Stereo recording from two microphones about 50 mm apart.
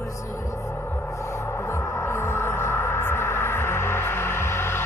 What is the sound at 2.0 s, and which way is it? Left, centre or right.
Music, left.